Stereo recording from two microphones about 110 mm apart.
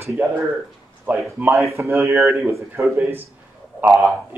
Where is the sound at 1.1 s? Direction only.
20° right (ahead or behind).